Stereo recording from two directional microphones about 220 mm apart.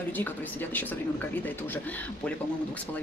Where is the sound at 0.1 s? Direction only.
10° left (ahead or behind).